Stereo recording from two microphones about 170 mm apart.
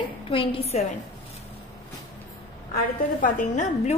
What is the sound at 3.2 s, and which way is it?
Speech, 45° left (ahead or behind).